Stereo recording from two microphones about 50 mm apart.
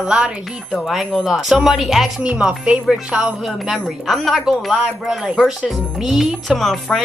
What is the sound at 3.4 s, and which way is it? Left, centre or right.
Speech, centre.